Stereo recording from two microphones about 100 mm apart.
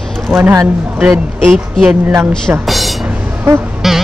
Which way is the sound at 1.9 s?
20° right (ahead or behind).